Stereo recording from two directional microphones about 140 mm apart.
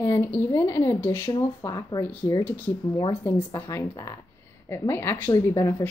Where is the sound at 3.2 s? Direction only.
15° left (ahead or behind).